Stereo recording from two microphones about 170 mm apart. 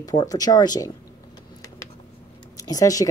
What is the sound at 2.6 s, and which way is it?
Speech, 20° left (ahead or behind).